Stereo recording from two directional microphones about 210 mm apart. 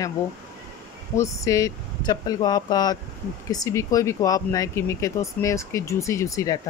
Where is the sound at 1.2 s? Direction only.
15° left (ahead or behind).